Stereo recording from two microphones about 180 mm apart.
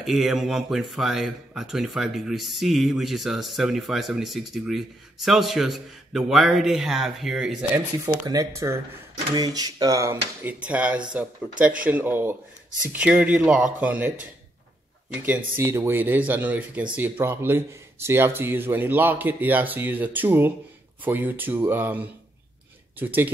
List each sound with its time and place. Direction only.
0.0 s speech: centre (ahead or behind)
7.7 s speech: 15° right (ahead or behind)
15.2 s speech: 10° right (ahead or behind)